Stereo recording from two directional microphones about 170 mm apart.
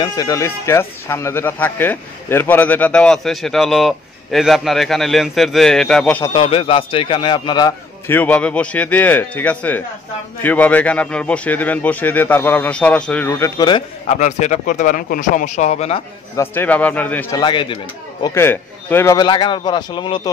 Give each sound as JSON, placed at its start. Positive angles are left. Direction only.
{"t": 0.0, "sound": "speech", "side_deg": 25}
{"t": 6.3, "sound": "a man's voice", "side_deg": 30}
{"t": 8.1, "sound": "speech", "side_deg": 10}
{"t": 13.6, "sound": "a man's voice", "side_deg": 25}
{"t": 14.0, "sound": "speech", "side_deg": 45}
{"t": 16.3, "sound": "speech", "side_deg": 10}
{"t": 17.4, "sound": "a man's voice", "side_deg": 30}
{"t": 18.2, "sound": "a man's voice", "side_deg": 15}